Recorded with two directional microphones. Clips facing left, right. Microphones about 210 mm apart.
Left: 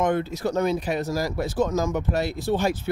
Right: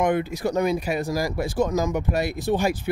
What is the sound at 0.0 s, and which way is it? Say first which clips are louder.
Speech: right 1 dB; 15° right (ahead or behind).